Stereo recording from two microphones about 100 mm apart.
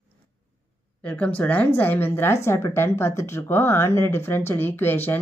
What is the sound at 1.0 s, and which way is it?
A woman's voice, 15° left (ahead or behind).